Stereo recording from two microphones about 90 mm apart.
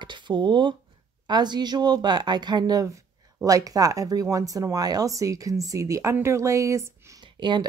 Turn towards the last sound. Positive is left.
turn(degrees=-60)  # may be behind; listen again after turning